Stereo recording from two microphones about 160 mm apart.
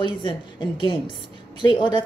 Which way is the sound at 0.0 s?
30° left (ahead or behind).